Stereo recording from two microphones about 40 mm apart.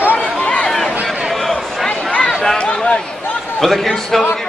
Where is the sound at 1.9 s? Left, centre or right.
Left.